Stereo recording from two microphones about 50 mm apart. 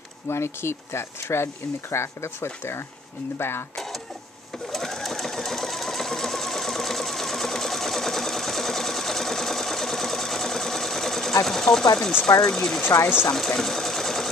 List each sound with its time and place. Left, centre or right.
0.3 s speech: left
3.7 s printer: centre
4.6 s sewing machine: centre
12.3 s speech: centre
12.5 s speech: centre
13.3 s sewing machine: centre